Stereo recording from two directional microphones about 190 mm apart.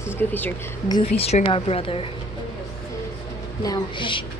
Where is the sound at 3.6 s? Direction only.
20° left (ahead or behind).